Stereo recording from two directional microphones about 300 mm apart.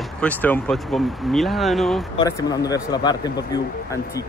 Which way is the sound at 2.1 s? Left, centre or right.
Centre.